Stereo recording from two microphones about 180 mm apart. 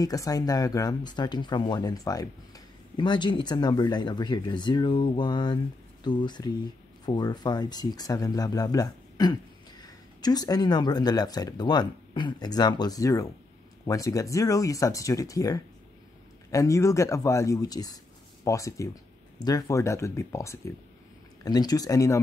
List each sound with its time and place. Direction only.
0.0 s speech: 20° left (ahead or behind)